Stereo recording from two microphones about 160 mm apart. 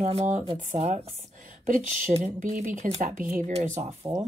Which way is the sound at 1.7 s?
55° right (ahead or behind).